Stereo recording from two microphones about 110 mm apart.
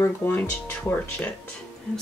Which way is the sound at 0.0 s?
20° left (ahead or behind).